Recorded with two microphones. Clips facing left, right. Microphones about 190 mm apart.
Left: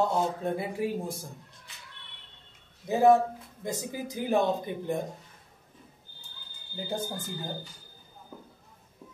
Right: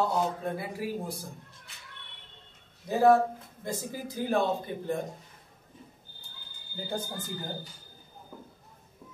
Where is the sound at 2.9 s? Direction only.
20° left (ahead or behind).